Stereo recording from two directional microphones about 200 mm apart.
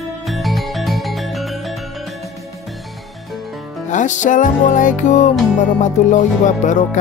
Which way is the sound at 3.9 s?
40° left (ahead or behind).